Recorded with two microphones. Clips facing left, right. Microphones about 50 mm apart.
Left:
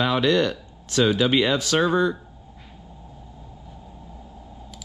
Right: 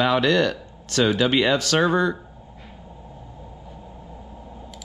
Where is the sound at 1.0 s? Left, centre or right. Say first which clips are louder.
Right 1 dB; right.